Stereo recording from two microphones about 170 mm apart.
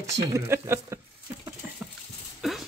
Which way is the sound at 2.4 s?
Centre (ahead or behind).